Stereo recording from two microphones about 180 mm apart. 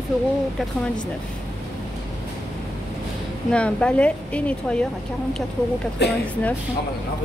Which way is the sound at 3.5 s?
5° left (ahead or behind).